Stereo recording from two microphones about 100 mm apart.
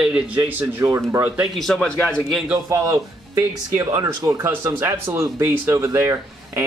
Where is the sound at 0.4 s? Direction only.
20° right (ahead or behind).